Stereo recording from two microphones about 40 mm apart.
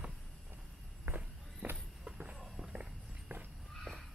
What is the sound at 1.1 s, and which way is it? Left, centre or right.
Walk, right.